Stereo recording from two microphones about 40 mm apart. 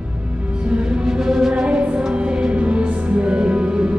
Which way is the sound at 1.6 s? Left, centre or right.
Right.